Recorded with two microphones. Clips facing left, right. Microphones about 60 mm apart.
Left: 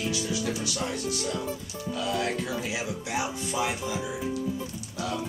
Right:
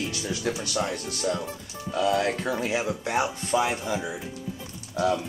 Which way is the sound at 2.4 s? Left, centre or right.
Right.